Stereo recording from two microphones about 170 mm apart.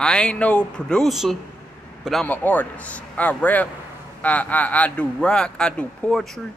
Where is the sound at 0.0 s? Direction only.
5° left (ahead or behind).